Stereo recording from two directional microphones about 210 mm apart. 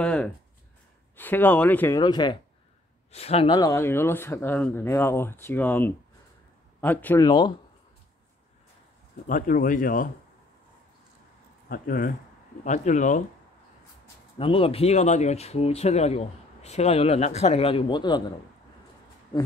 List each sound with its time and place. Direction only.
0.0 s a sound: 5° left (ahead or behind)
1.1 s speech: 10° left (ahead or behind)
2.0 s speech: 20° left (ahead or behind)
7.2 s speech: 20° left (ahead or behind)
9.3 s speech: 40° left (ahead or behind)
11.7 s speech: 40° left (ahead or behind)
14.4 s speech: 25° left (ahead or behind)